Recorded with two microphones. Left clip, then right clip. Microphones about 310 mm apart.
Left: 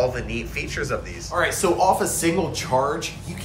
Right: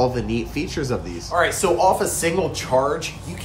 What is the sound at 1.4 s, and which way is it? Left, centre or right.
Speech, centre.